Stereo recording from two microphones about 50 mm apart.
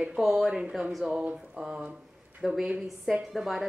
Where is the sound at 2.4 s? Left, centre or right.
Centre.